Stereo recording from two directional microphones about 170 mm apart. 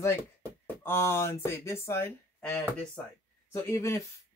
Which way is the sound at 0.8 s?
15° left (ahead or behind).